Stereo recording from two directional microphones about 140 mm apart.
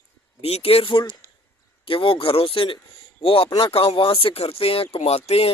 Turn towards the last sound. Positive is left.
turn(degrees=45)  # may be behind; listen again after turning